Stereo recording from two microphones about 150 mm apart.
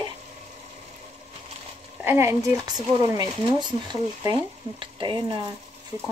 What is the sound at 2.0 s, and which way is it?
Speech, 15° right (ahead or behind).